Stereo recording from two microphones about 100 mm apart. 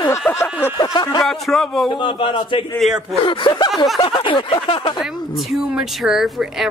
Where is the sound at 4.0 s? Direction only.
55° left (ahead or behind).